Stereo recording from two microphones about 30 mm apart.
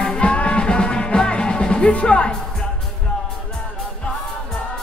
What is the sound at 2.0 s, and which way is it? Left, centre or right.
Speech, left.